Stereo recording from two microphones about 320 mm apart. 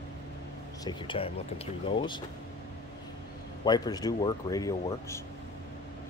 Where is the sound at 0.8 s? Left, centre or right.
Centre.